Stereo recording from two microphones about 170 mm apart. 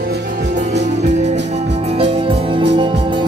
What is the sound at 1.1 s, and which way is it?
Music, 45° right (ahead or behind).